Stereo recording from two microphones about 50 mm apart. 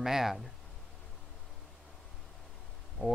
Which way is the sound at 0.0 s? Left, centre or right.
Centre.